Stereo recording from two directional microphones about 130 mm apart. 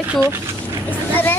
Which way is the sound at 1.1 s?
15° left (ahead or behind).